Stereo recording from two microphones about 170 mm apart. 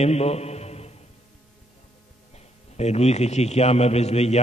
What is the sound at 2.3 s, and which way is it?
A man's voice, 40° left (ahead or behind).